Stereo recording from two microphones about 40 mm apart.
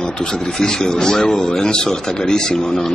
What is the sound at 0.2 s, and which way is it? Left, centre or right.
A man's voice, centre.